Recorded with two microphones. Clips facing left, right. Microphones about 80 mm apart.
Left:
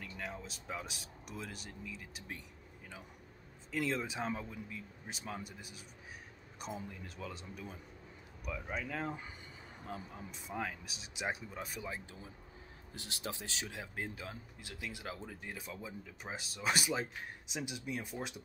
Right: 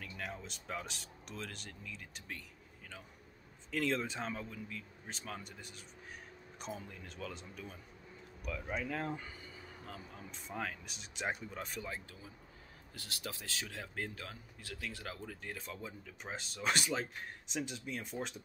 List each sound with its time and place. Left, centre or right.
0.0 s speech: centre
3.7 s speech: centre
4.3 s speech: centre
8.5 s speech: centre
9.8 s speech: left
10.3 s speech: centre
12.9 s speech: left
15.5 s speech: centre